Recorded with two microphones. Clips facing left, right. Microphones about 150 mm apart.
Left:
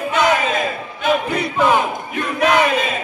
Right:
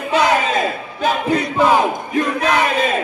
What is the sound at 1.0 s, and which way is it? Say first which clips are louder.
Speech: left 1 dB; 40° right (ahead or behind).